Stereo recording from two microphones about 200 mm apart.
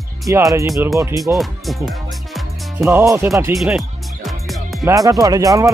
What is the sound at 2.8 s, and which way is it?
Speech, 15° right (ahead or behind).